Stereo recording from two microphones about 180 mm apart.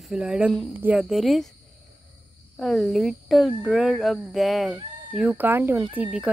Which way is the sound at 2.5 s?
Centre (ahead or behind).